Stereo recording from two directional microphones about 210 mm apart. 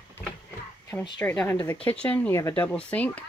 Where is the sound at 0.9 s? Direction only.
10° left (ahead or behind).